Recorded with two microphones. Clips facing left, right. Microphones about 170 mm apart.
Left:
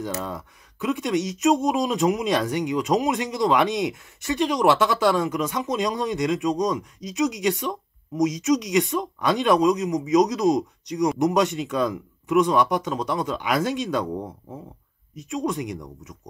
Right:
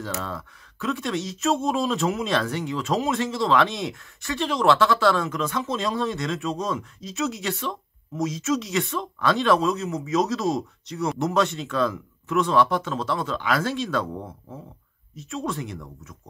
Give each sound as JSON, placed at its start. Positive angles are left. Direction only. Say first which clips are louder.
{"t": 0.0, "sound": "speech", "louder": "left 2 dB", "side_deg": 15}